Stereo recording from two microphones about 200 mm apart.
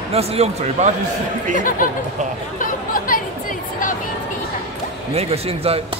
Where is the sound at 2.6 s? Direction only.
40° left (ahead or behind).